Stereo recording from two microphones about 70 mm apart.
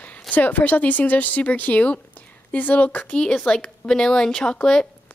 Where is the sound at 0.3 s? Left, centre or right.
Left.